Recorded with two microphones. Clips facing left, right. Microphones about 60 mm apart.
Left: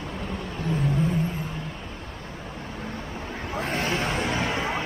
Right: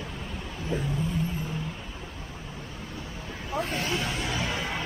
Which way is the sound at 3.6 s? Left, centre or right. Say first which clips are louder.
Left 3 dB; left.